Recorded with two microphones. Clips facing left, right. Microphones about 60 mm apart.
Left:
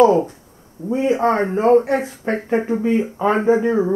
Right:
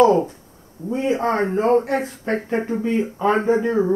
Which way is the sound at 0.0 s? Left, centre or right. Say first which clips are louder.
Left 2 dB; centre.